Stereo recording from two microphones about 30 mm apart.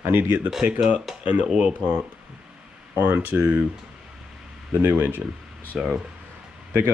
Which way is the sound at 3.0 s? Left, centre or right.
Right.